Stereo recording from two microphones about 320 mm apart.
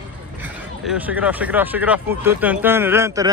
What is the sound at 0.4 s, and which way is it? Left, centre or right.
Speech, centre.